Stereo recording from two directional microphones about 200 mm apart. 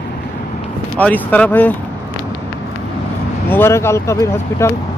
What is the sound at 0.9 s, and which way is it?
Speech, 5° left (ahead or behind).